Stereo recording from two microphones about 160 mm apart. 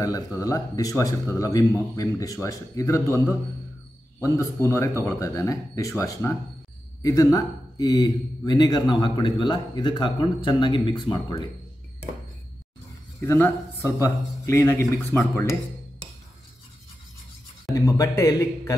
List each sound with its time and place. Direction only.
0.0 s a man's voice: 20° left (ahead or behind)
13.2 s speech: 15° left (ahead or behind)
17.7 s a man's voice: 20° left (ahead or behind)